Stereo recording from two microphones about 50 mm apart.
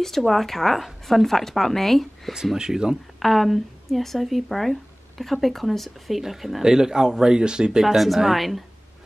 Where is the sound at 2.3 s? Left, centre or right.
Centre.